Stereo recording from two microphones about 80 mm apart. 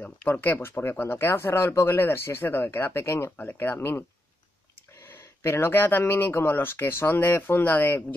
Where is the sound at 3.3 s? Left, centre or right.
Centre.